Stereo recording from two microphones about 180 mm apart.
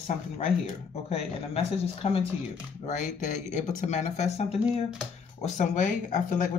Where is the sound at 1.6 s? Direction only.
35° left (ahead or behind).